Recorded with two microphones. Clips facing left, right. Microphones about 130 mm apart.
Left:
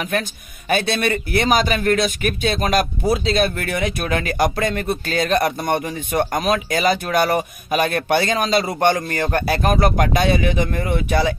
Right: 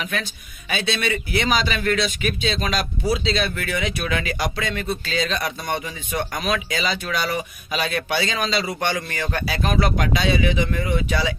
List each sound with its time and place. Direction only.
0.0 s a man's voice: 50° left (ahead or behind)